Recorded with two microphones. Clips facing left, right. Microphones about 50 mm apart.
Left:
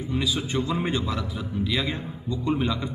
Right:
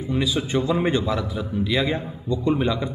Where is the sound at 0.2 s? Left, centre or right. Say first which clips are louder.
Right 4 dB; centre.